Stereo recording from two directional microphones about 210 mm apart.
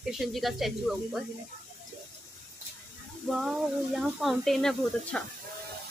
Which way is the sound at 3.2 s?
Centre (ahead or behind).